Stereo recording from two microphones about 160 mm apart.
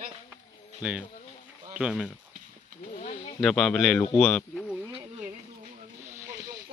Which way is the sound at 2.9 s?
50° left (ahead or behind).